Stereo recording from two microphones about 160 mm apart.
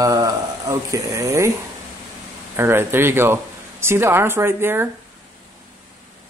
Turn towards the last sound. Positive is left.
turn(degrees=-15)  # may be behind; listen again after turning